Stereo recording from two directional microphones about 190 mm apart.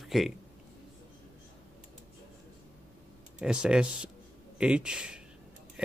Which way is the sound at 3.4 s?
5° right (ahead or behind).